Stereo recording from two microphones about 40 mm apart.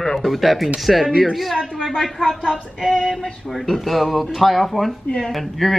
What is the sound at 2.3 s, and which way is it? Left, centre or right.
Speech, left.